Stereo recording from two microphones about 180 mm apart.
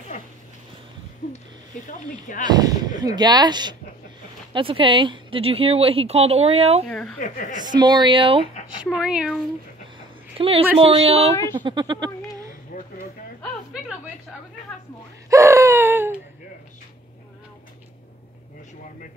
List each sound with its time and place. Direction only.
1.9 s speech: 45° left (ahead or behind)
2.4 s speech: 20° right (ahead or behind)
6.9 s speech: 5° left (ahead or behind)
7.2 s speech: 45° left (ahead or behind)
7.5 s speech: 25° right (ahead or behind)
8.8 s speech: 5° right (ahead or behind)
10.3 s speech: 30° right (ahead or behind)
12.7 s a sound: 45° left (ahead or behind)
15.2 s a sound: 15° right (ahead or behind)